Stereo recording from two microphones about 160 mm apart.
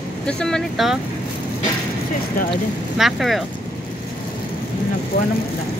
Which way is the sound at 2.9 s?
Centre (ahead or behind).